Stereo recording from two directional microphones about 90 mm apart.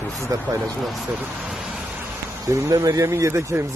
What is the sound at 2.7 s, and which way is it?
Speech, 40° right (ahead or behind).